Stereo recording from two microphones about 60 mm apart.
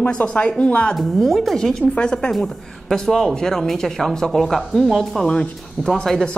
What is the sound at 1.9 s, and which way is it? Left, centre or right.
Speech, centre.